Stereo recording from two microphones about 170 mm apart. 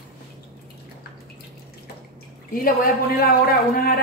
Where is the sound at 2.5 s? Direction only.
60° left (ahead or behind).